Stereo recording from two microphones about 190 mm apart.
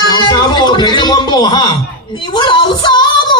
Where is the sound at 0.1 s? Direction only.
20° left (ahead or behind).